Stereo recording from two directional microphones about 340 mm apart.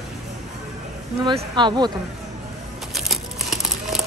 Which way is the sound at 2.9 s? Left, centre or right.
Centre.